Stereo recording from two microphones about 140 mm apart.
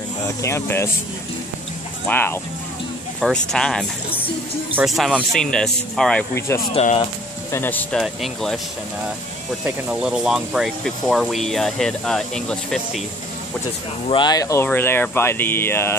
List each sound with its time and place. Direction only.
0.4 s speech: 20° left (ahead or behind)
2.0 s speech: 15° left (ahead or behind)
3.2 s speech: centre (ahead or behind)
6.7 s speech: 55° left (ahead or behind)
7.5 s speech: 15° left (ahead or behind)
8.0 s speech: centre (ahead or behind)
9.7 s speech: 5° right (ahead or behind)
14.0 s speech: 35° left (ahead or behind); by 16.0 s 15° left (ahead or behind)